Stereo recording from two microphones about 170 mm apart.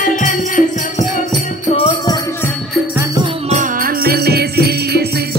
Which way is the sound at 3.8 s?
65° right (ahead or behind).